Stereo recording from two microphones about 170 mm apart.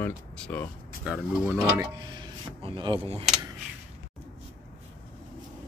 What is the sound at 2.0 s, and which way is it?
Speech, 30° right (ahead or behind).